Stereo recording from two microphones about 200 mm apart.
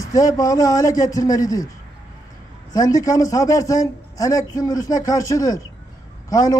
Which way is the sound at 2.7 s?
20° left (ahead or behind).